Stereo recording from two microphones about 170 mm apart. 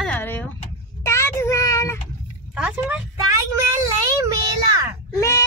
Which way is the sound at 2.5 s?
5° right (ahead or behind).